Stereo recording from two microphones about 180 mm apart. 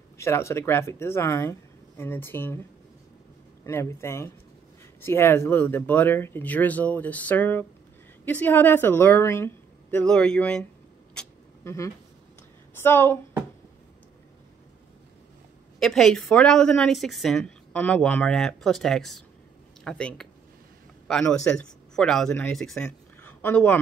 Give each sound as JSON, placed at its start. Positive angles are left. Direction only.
{"t": 0.2, "sound": "speech", "side_deg": 15}
{"t": 3.6, "sound": "speech", "side_deg": 15}
{"t": 11.1, "sound": "vehicle", "side_deg": 15}
{"t": 12.7, "sound": "speech", "side_deg": 10}
{"t": 15.8, "sound": "a woman's voice", "side_deg": 5}